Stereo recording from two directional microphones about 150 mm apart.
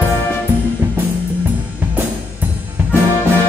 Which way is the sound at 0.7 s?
10° right (ahead or behind).